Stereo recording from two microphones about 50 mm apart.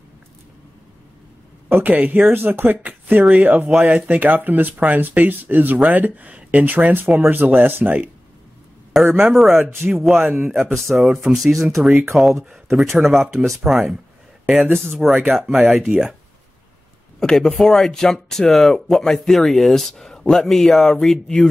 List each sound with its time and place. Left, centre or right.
1.7 s speech: right
2.3 s speech: right
8.9 s speech: centre
10.3 s speech: right
11.0 s speech: centre
14.4 s a sound: centre
15.0 s speech: centre
17.2 s speech: centre